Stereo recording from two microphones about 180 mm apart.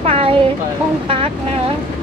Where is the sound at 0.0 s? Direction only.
35° right (ahead or behind).